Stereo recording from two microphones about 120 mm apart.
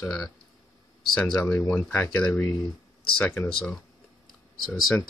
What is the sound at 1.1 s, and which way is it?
Speech, 5° left (ahead or behind).